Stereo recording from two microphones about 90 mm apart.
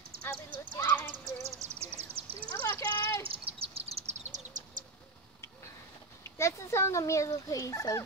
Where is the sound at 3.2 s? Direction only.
90° right.